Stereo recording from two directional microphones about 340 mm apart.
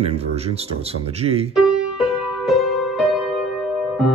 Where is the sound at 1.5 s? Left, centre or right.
Centre.